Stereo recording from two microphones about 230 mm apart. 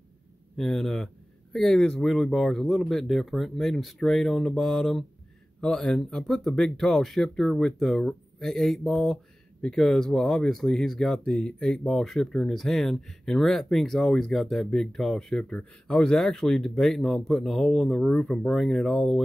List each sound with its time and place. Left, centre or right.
0.6 s speech: centre